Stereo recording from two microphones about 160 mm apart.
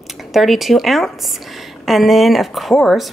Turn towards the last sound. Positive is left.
turn(degrees=0)  # may be behind; listen again after turning